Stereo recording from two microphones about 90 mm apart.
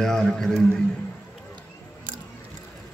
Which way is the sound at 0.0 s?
5° left (ahead or behind).